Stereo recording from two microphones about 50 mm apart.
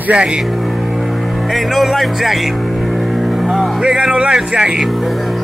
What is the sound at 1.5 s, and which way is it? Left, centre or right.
Speech, centre.